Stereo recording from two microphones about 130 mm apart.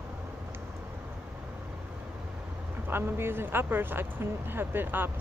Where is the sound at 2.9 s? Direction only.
20° right (ahead or behind).